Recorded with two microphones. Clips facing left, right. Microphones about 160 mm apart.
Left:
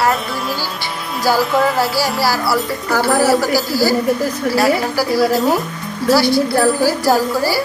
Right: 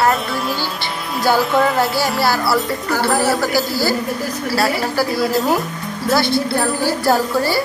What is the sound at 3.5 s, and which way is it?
Speech, 40° left (ahead or behind).